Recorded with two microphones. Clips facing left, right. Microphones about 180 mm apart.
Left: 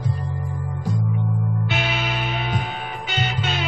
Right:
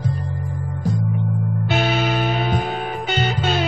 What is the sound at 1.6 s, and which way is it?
Music, 40° right (ahead or behind).